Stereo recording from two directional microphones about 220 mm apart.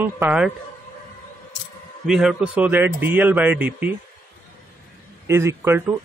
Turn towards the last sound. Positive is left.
turn(degrees=-10)  # may be behind; listen again after turning